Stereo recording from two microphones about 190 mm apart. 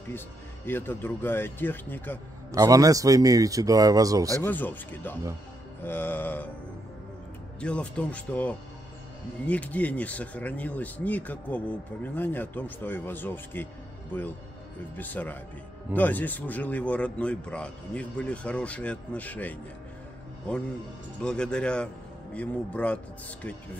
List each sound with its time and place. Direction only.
0.7 s speech: 10° left (ahead or behind)
2.5 s a man's voice: 20° right (ahead or behind)
4.4 s speech: 10° left (ahead or behind)
7.6 s speech: 5° left (ahead or behind)
15.0 s speech: 10° left (ahead or behind)
21.2 s speech: 5° left (ahead or behind)